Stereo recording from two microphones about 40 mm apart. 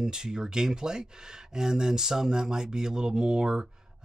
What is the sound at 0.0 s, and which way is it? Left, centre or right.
Speech, centre.